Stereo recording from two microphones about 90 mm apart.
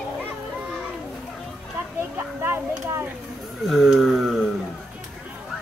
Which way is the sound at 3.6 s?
5° right (ahead or behind).